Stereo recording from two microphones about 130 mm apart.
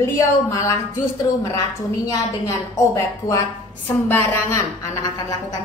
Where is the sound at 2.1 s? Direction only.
25° left (ahead or behind).